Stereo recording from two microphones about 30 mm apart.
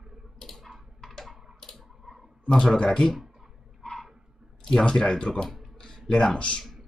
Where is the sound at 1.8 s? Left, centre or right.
Centre.